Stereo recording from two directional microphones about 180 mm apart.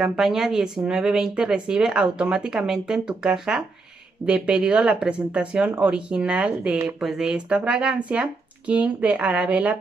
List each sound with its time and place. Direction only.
0.0 s speech: 5° right (ahead or behind)